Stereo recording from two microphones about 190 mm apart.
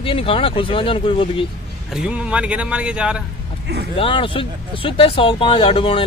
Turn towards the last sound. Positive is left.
turn(degrees=25)  # may be behind; listen again after turning